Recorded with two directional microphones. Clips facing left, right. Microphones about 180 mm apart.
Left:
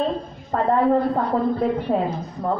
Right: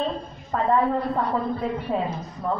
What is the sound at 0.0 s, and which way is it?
A woman's voice, 45° left (ahead or behind).